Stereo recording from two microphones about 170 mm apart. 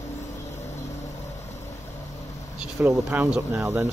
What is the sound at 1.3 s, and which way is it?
Vehicle, 40° left (ahead or behind).